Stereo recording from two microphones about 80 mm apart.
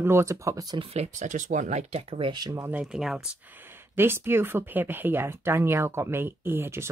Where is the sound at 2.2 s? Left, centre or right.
Right.